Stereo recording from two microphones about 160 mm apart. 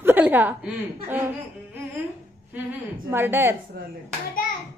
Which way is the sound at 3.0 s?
15° right (ahead or behind).